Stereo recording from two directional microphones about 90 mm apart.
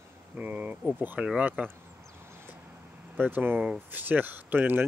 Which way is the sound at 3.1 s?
25° right (ahead or behind).